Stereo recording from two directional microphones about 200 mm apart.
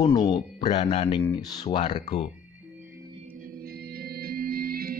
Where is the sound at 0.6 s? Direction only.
35° left (ahead or behind).